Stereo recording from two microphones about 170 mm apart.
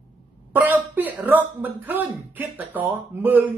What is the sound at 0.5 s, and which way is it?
Speech, 10° right (ahead or behind).